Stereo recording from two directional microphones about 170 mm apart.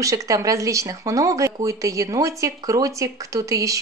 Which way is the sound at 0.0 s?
20° right (ahead or behind).